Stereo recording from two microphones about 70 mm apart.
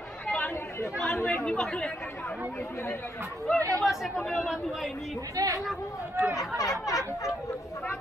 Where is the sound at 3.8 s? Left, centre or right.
Centre.